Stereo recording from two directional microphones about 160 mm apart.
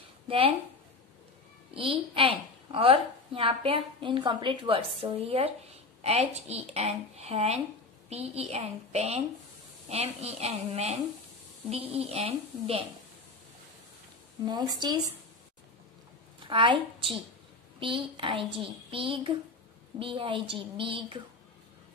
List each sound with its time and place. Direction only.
1.7 s a woman's voice: 35° right (ahead or behind)
14.8 s speech: 25° right (ahead or behind)
16.4 s a woman's voice: 30° right (ahead or behind)